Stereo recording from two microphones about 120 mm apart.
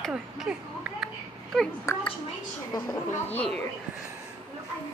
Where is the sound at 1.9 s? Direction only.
25° left (ahead or behind).